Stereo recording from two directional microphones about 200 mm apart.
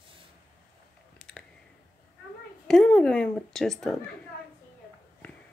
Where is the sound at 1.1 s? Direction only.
5° left (ahead or behind).